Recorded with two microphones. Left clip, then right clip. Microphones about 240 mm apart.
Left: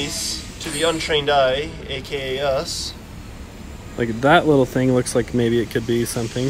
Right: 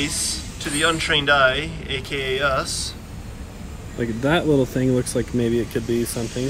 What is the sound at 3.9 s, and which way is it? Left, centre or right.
Speech, left.